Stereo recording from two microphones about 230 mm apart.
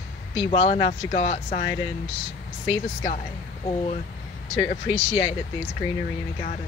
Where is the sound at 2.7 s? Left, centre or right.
Left.